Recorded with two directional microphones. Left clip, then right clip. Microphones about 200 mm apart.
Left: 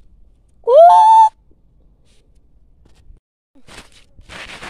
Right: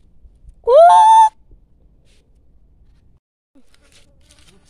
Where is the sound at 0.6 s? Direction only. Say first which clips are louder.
Left 1 dB; 10° right (ahead or behind).